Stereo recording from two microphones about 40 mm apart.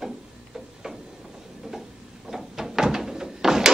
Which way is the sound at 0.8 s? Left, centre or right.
Centre.